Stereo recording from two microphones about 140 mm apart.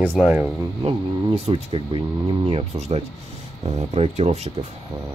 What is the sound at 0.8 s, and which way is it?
Speech, 40° right (ahead or behind).